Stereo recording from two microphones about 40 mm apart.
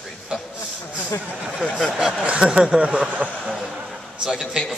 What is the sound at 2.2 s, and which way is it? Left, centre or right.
Speech, right.